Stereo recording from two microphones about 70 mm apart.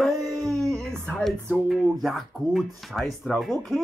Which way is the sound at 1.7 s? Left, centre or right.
Centre.